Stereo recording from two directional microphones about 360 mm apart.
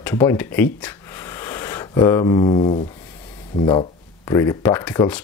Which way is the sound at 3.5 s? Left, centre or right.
Centre.